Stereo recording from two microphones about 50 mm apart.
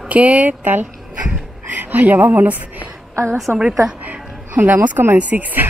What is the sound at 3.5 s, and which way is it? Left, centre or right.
Speech, right.